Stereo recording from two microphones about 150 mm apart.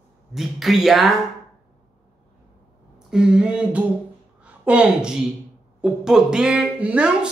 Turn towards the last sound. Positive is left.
turn(degrees=-5)  # may be behind; listen again after turning